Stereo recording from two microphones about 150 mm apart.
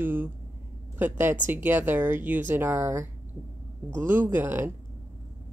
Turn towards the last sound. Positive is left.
turn(degrees=-15)  # may be behind; listen again after turning